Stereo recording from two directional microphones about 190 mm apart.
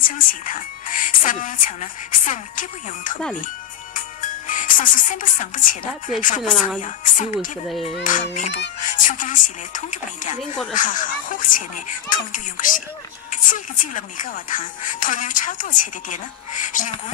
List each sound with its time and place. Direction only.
0.0 s speech: 45° left (ahead or behind)
4.5 s a child's voice: 45° left (ahead or behind)